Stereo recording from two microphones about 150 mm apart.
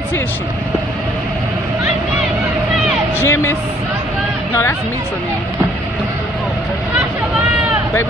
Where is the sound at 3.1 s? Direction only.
15° left (ahead or behind).